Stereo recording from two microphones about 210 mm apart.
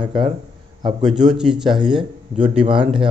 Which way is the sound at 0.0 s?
25° right (ahead or behind).